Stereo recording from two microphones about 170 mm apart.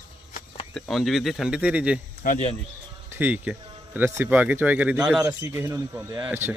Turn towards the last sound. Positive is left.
turn(degrees=-15)  # may be behind; listen again after turning